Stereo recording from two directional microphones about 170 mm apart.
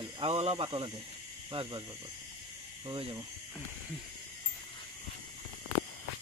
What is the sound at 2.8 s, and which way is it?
Speech, 25° right (ahead or behind).